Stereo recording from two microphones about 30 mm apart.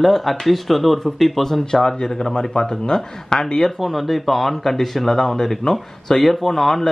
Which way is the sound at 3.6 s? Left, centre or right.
Centre.